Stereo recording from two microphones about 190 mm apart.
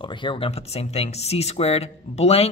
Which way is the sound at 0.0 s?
25° left (ahead or behind).